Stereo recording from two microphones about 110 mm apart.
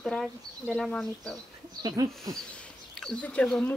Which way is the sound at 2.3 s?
35° right (ahead or behind).